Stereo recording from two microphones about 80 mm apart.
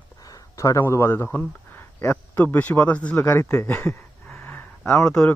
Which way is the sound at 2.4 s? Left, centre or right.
Left.